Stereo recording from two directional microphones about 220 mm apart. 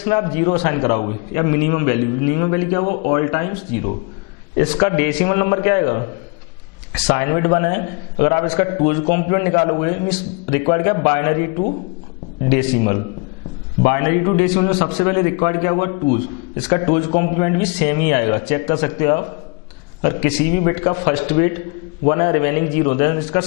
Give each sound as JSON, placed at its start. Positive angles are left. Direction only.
{"t": 0.0, "sound": "a man's voice", "side_deg": 15}
{"t": 7.1, "sound": "a man's voice", "side_deg": 15}